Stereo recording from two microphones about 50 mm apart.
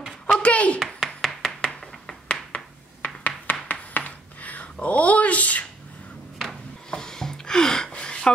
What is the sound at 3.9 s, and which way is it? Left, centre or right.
Writing, left.